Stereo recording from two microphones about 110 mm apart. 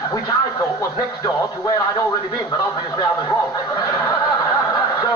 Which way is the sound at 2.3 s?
40° left (ahead or behind).